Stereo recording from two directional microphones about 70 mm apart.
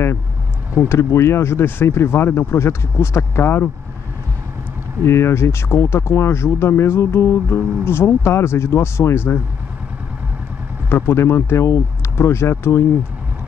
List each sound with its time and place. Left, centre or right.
0.8 s speech: left
5.0 s speech: left
10.9 s speech: left